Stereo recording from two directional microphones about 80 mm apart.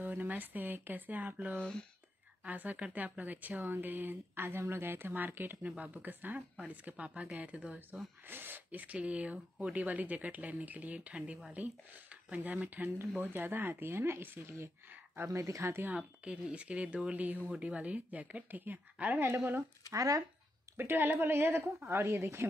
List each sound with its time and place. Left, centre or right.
0.0 s speech: right
1.6 s speech: centre
2.4 s speech: centre
16.0 s speech: centre
19.9 s speech: right
20.7 s a woman's voice: right